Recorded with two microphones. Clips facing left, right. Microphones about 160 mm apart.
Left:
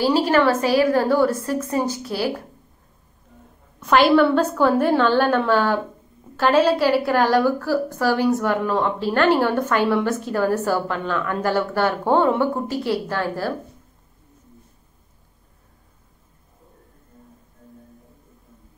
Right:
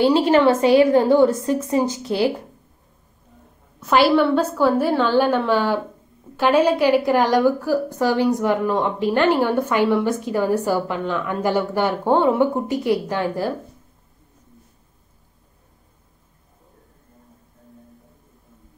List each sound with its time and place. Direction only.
0.0 s a woman's voice: 25° right (ahead or behind)
3.8 s a woman's voice: 5° right (ahead or behind)